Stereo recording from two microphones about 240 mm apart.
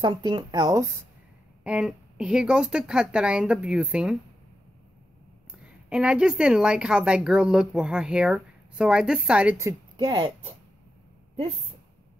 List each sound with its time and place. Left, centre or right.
0.0 s speech: centre
1.6 s a woman's voice: centre
5.6 s a woman's voice: centre; by 10.5 s right